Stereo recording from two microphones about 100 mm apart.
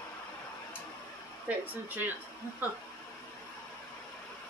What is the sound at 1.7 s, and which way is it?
Speech, 20° right (ahead or behind).